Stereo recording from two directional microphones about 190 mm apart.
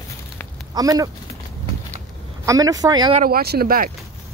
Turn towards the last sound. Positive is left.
turn(degrees=-50)  # may be behind; listen again after turning